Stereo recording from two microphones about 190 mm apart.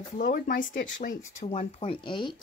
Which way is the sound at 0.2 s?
45° left (ahead or behind).